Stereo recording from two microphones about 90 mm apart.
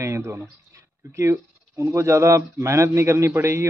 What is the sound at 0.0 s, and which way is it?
Speech, 30° right (ahead or behind).